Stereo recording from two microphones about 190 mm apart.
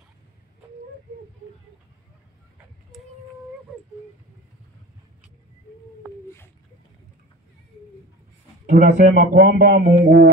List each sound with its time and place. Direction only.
8.6 s speech: 45° right (ahead or behind)